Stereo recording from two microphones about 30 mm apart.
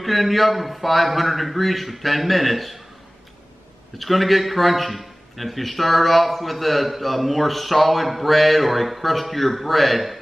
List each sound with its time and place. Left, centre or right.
0.0 s a man's voice: centre
4.0 s a man's voice: centre